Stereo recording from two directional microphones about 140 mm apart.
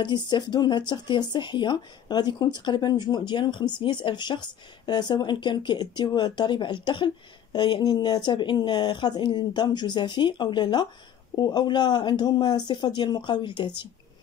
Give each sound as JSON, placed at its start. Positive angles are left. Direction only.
{"t": 0.0, "sound": "speech", "side_deg": 30}